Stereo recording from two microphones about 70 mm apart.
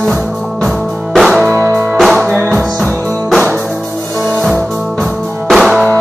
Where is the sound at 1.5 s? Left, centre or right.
Right.